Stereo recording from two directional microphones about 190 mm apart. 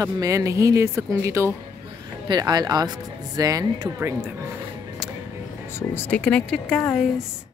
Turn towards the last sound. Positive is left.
turn(degrees=5)  # may be behind; listen again after turning